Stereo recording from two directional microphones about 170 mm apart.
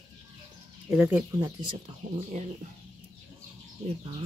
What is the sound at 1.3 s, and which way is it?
Speech, 25° right (ahead or behind).